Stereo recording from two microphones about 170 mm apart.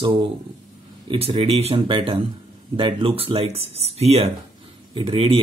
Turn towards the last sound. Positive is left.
turn(degrees=-30)  # may be behind; listen again after turning